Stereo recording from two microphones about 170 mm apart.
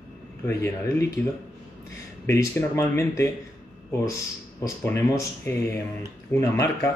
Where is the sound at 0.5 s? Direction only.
15° left (ahead or behind).